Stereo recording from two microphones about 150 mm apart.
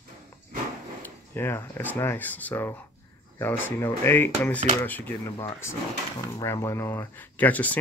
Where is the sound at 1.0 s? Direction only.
15° left (ahead or behind).